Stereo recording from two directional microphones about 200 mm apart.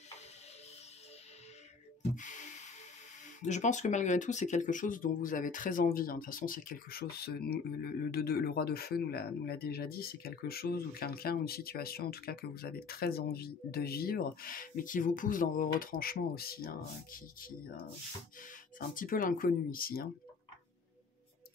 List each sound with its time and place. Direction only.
3.4 s speech: 35° left (ahead or behind)